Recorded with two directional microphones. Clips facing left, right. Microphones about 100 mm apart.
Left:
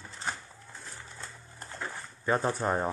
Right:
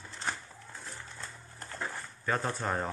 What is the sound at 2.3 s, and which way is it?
Speech, 20° left (ahead or behind).